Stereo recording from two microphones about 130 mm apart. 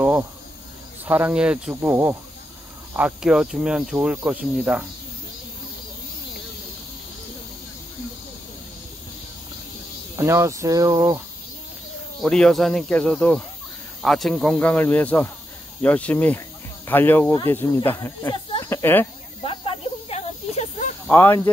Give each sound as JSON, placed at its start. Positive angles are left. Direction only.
{"t": 1.0, "sound": "speech", "side_deg": -15}
{"t": 10.1, "sound": "speech", "side_deg": -20}
{"t": 12.2, "sound": "speech", "side_deg": 5}
{"t": 19.4, "sound": "snake", "side_deg": 45}
{"t": 21.1, "sound": "speech", "side_deg": 15}